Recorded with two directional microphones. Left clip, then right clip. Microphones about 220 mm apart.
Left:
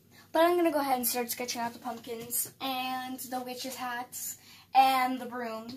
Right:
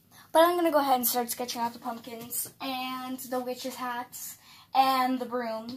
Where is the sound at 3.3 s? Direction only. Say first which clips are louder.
Right 5 dB; centre (ahead or behind).